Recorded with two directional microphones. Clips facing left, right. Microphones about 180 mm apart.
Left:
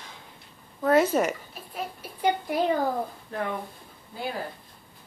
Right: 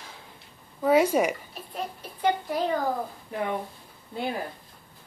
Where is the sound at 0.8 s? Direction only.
10° right (ahead or behind).